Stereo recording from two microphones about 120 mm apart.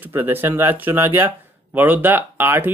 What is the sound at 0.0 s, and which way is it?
Speech, 15° right (ahead or behind).